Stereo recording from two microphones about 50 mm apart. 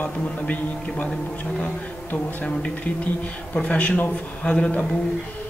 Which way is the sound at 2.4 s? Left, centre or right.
Centre.